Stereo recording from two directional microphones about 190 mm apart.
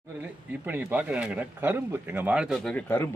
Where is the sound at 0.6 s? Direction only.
10° right (ahead or behind); by 3.1 s 15° left (ahead or behind).